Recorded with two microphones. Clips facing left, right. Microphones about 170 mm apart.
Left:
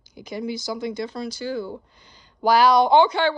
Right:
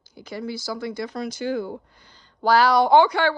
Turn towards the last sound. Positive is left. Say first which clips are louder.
# even
turn(degrees=25)  # may be behind; listen again after turning